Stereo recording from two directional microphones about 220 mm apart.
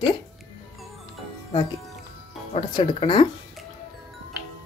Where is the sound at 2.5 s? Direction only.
25° left (ahead or behind).